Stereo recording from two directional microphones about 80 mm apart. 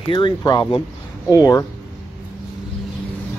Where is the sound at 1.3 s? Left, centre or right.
Left.